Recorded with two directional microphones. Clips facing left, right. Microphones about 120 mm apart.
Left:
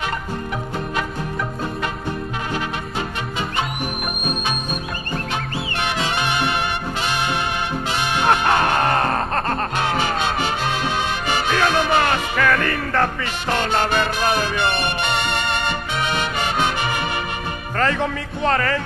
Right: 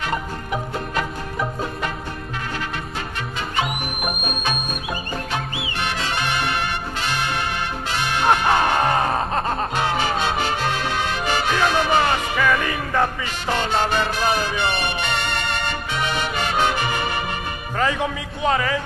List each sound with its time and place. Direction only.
5.8 s music: 15° left (ahead or behind)
8.3 s music: 15° right (ahead or behind)
11.5 s music: 15° right (ahead or behind)
15.0 s music: 15° left (ahead or behind)
17.7 s speech: 10° right (ahead or behind)